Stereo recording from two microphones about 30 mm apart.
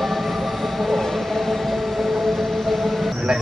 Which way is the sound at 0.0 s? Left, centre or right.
Centre.